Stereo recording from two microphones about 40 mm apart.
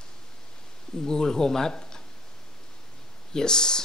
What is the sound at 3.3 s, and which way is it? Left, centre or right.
Speech, centre.